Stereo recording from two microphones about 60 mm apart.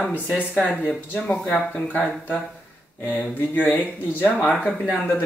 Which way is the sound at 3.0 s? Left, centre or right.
Left.